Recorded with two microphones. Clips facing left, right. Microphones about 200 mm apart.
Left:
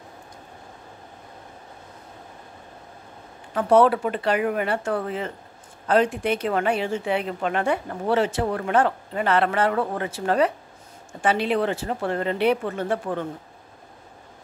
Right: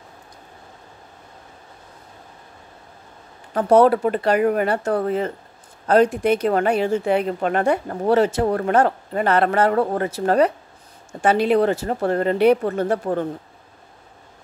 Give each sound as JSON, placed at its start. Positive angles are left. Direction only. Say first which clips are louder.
{"t": 3.5, "sound": "a woman's voice", "louder": "right 3 dB", "side_deg": -40}